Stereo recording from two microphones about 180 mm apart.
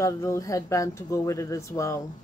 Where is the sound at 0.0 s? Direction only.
15° left (ahead or behind).